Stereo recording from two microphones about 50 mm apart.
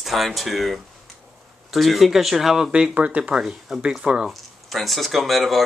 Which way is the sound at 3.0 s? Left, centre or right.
Right.